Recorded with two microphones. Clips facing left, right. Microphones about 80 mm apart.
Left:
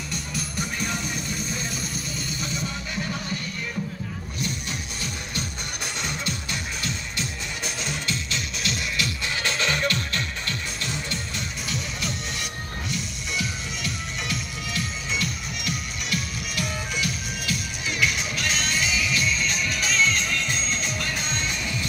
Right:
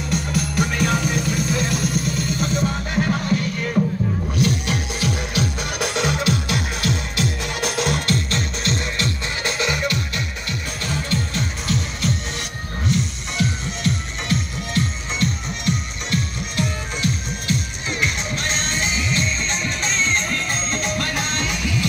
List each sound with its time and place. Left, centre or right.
0.1 s music: right
4.4 s music: right
9.4 s music: centre
11.1 s music: right